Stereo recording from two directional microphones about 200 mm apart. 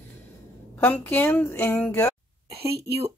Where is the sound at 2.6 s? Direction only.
55° right (ahead or behind).